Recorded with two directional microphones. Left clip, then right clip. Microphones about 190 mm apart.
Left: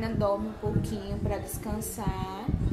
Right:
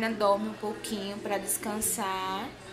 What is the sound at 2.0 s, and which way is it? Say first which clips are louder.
Speech: right 5 dB; centre (ahead or behind).